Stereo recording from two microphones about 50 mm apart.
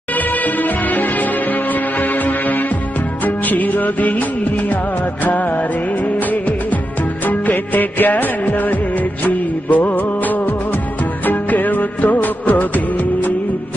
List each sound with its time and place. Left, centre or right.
0.1 s music: left
3.3 s music of bollywood: left
5.2 s music: left
6.1 s music of bollywood: left
11.2 s music: left